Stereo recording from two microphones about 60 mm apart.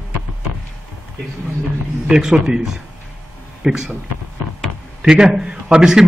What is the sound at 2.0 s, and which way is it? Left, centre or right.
A man's voice, centre.